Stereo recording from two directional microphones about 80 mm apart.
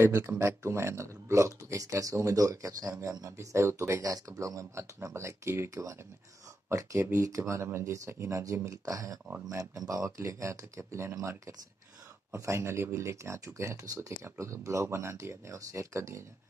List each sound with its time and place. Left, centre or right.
0.2 s speech: right